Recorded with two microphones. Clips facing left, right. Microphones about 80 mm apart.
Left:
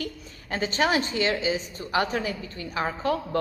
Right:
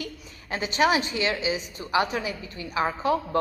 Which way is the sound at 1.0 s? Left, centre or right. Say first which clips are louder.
Left 1 dB; left.